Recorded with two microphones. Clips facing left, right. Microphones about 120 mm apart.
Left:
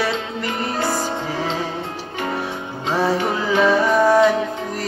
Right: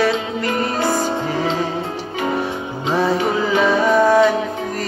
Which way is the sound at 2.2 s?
10° right (ahead or behind).